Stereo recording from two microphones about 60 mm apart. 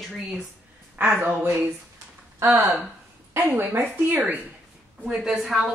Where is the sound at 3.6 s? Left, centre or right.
Right.